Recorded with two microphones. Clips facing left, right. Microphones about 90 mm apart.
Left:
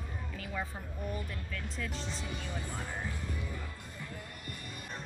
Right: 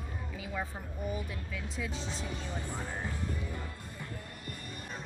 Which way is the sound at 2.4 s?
15° right (ahead or behind).